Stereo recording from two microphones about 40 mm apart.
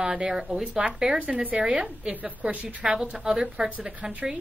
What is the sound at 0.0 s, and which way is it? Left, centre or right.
A woman's voice, centre.